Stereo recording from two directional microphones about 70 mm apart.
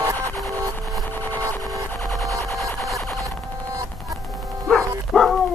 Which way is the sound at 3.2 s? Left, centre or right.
Right.